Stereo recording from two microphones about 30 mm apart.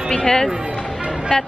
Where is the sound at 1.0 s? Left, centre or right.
Right.